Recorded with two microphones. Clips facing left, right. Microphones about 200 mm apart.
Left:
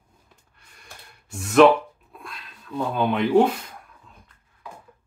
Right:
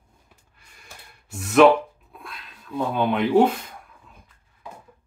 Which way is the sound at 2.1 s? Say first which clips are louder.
Even; centre (ahead or behind).